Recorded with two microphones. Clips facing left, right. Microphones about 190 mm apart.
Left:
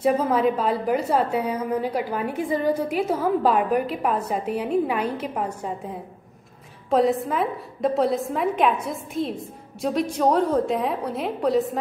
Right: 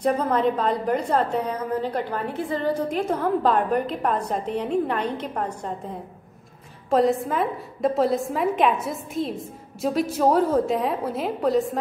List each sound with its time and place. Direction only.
0.0 s a woman's voice: 5° left (ahead or behind)